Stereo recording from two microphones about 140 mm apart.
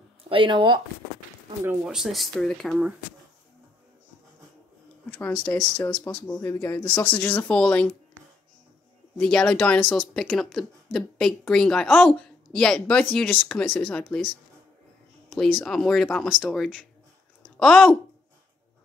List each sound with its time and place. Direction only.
0.3 s speech: 35° right (ahead or behind)
1.9 s speech: centre (ahead or behind)
5.2 s speech: 10° left (ahead or behind)
9.2 s speech: 5° left (ahead or behind)
15.3 s speech: 5° left (ahead or behind)